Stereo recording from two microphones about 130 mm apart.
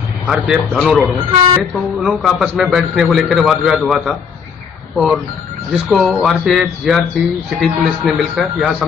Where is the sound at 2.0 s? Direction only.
Centre (ahead or behind).